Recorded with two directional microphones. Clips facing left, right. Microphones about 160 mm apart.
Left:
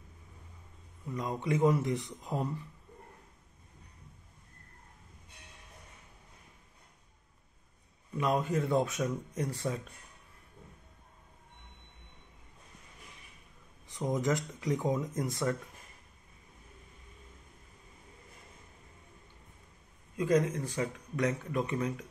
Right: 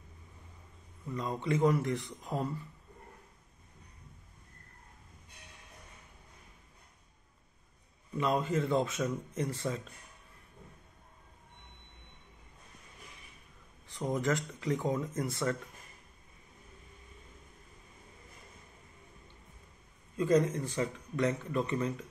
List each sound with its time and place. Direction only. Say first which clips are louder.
1.0 s speech: even; 10° left (ahead or behind)
8.2 s speech: even; 10° left (ahead or behind)
13.8 s speech: left 1 dB; 15° left (ahead or behind)
15.1 s speech: left 1 dB; centre (ahead or behind)
20.2 s speech: right 1 dB; 10° left (ahead or behind)